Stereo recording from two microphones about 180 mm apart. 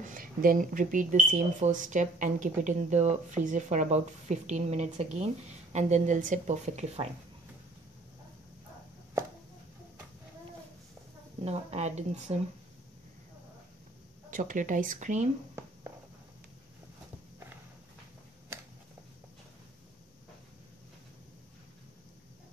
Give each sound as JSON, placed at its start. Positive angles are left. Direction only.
{"t": 0.0, "sound": "speech", "side_deg": -50}
{"t": 11.4, "sound": "speech", "side_deg": -35}
{"t": 14.3, "sound": "speech", "side_deg": -45}